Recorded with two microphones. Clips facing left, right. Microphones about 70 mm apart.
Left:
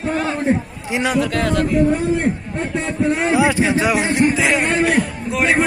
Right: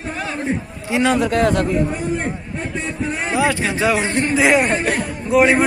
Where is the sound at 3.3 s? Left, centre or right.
Centre.